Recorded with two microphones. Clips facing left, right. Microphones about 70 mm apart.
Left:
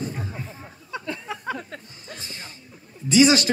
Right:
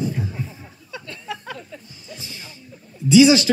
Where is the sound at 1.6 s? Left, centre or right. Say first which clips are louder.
Left 1 dB; left.